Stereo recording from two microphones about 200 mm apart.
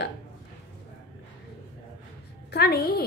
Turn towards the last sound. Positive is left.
turn(degrees=50)  # may be behind; listen again after turning